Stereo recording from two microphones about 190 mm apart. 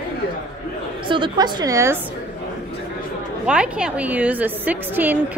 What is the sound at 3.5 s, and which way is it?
A woman's voice, 5° right (ahead or behind).